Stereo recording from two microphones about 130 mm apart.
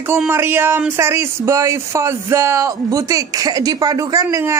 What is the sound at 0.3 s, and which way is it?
Speech, 15° right (ahead or behind).